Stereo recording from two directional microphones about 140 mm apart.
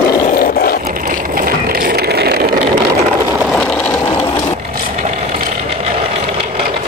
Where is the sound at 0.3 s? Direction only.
90° left.